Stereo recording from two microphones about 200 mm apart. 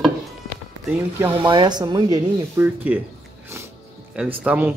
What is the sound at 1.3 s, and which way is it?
Speech, 20° right (ahead or behind).